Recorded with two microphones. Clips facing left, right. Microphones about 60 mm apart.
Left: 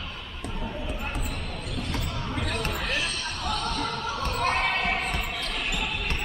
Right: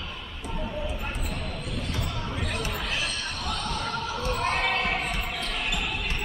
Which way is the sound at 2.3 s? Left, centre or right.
Left.